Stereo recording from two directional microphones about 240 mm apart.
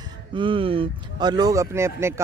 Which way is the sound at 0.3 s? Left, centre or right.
Right.